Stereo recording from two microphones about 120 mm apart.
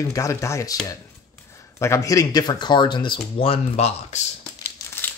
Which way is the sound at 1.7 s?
25° left (ahead or behind).